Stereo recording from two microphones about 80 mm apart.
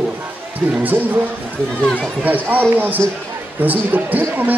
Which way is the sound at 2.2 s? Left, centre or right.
Right.